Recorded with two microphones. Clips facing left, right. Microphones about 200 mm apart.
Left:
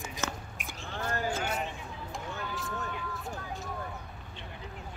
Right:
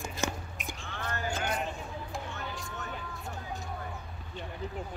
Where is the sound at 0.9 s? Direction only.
30° left (ahead or behind).